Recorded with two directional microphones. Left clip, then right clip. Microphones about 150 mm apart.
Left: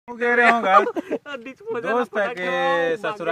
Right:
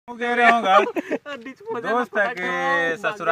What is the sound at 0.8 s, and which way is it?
Speech, 45° right (ahead or behind).